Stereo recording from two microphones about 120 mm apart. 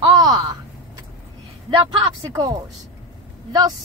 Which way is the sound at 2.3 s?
30° right (ahead or behind).